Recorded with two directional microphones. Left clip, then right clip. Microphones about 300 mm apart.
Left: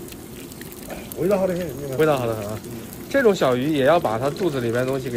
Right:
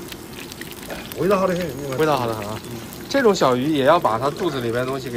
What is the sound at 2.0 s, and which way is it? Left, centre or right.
Speech, centre.